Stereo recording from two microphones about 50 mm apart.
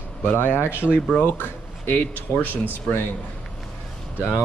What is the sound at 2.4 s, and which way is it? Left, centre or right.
Speech, left.